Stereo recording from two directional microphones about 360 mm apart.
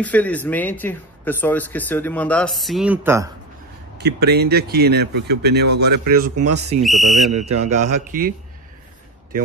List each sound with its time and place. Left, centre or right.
0.0 s speech: centre
4.0 s speech: right
6.4 s speech: right
6.8 s speech: centre
7.6 s speech: centre